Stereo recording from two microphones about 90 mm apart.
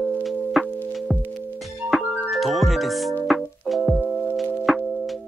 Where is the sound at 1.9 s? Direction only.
Centre (ahead or behind).